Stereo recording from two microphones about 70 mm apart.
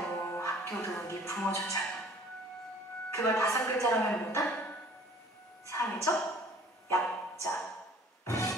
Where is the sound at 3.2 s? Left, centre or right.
Left.